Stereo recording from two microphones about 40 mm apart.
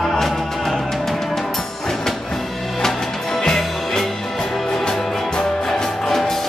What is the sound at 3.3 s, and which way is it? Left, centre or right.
Music, centre.